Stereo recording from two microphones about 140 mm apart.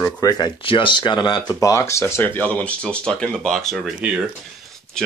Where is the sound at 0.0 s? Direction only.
25° left (ahead or behind).